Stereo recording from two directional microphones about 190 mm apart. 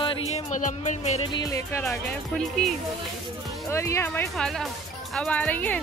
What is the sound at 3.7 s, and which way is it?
Speech, 15° left (ahead or behind).